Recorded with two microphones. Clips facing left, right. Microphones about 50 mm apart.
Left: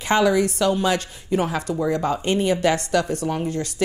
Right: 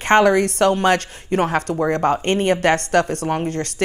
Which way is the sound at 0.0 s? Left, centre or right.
Right.